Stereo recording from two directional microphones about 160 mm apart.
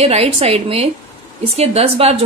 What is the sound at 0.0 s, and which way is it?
A woman's voice, 40° right (ahead or behind).